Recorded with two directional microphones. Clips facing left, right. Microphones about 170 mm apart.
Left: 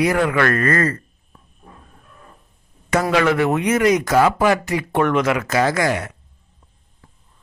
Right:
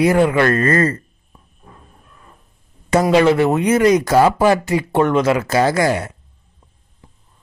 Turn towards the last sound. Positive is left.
turn(degrees=-30)  # may be behind; listen again after turning